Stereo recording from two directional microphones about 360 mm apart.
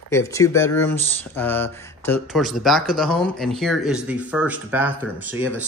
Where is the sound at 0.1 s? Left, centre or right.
Centre.